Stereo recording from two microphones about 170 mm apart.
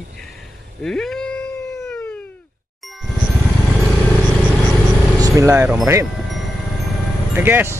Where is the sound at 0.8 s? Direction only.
5° left (ahead or behind).